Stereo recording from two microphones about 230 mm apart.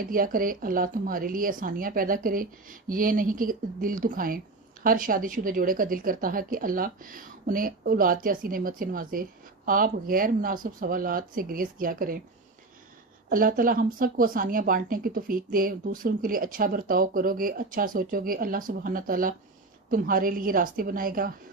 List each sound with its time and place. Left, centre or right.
0.1 s speech: right
13.3 s speech: right